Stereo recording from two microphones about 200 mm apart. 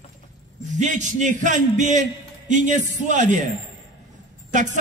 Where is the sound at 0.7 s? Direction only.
40° right (ahead or behind).